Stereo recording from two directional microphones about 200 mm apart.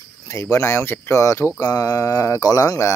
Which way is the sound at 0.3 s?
15° left (ahead or behind).